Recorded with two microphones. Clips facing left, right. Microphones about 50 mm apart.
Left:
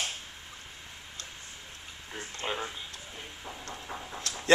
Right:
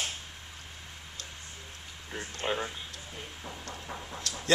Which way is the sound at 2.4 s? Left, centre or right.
Centre.